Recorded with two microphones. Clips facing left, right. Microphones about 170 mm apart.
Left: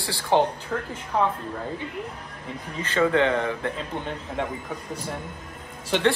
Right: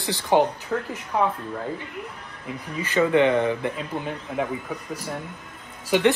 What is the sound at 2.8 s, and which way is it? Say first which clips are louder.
Speech: right 2 dB; 15° right (ahead or behind).